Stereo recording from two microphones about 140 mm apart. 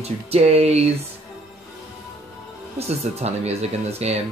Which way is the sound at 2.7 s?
50° right (ahead or behind).